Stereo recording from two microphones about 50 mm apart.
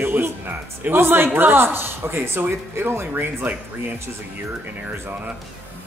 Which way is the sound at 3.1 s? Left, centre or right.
Right.